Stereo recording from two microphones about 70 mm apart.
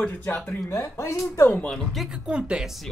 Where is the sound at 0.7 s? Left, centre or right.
Left.